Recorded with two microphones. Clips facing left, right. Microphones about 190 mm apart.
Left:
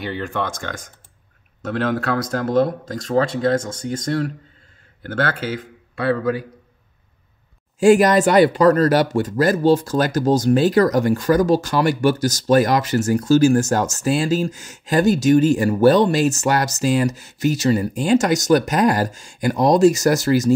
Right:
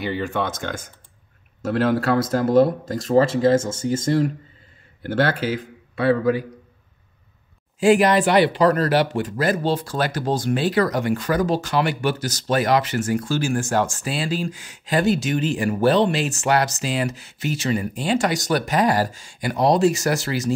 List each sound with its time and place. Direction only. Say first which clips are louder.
0.0 s speech: right 1 dB; centre (ahead or behind)
7.8 s speech: left 3 dB; 45° left (ahead or behind)